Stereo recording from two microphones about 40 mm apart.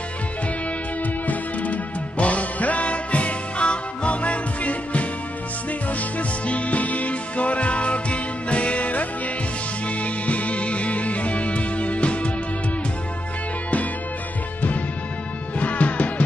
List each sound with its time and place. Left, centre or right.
1.2 s music: left
15.6 s music: left